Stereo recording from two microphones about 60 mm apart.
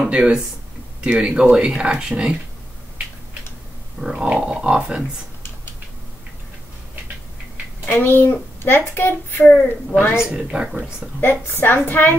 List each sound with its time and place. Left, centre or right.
0.0 s speech: centre
4.0 s speech: centre
7.8 s a child's voice: left
10.5 s speech: centre
11.1 s a child's voice: left